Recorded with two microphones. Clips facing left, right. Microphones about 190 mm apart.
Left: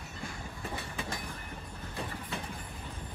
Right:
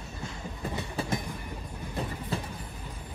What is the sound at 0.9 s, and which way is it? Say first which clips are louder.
Train: right 7 dB; 30° right (ahead or behind).